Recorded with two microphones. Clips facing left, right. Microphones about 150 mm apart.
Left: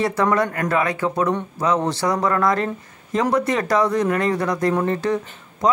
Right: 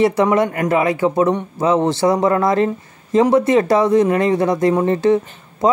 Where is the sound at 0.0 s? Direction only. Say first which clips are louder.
Right 5 dB; 25° right (ahead or behind).